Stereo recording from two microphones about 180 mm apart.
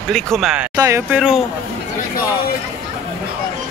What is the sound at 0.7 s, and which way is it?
Speech, 20° right (ahead or behind).